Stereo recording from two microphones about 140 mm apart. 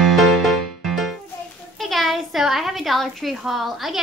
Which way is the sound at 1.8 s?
Centre (ahead or behind).